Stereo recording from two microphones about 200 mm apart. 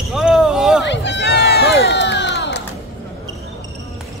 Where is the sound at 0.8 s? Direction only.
60° left (ahead or behind).